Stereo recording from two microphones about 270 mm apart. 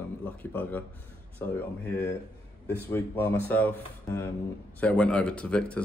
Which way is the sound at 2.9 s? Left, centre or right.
Centre.